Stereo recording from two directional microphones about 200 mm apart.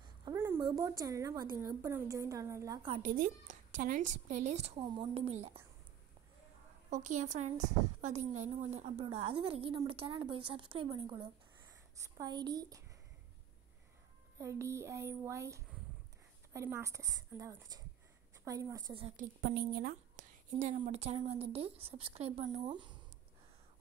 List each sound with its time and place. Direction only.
0.2 s a sound: 15° right (ahead or behind)
0.7 s a woman's voice: 20° right (ahead or behind)
3.0 s a woman's voice: 40° right (ahead or behind)
6.9 s a woman's voice: 35° right (ahead or behind); by 12.8 s 20° right (ahead or behind)
14.4 s a woman's voice: 15° right (ahead or behind)
19.4 s a woman's voice: 50° right (ahead or behind)